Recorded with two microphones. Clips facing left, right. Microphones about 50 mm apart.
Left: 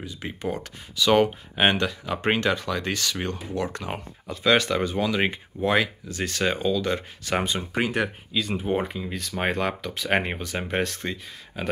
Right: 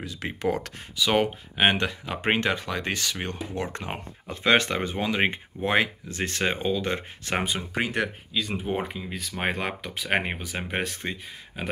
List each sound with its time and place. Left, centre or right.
0.0 s speech: right
0.9 s speech: centre
1.8 s speech: right
7.4 s speech: centre